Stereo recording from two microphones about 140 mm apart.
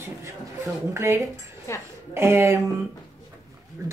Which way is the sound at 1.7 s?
20° left (ahead or behind).